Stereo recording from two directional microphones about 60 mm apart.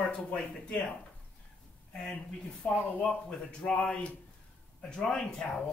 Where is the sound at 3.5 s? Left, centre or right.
Centre.